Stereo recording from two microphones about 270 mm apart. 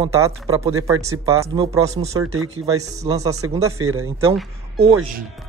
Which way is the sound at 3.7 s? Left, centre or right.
Right.